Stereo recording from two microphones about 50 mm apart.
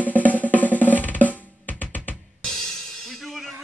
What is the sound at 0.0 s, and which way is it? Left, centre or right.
Drum, left.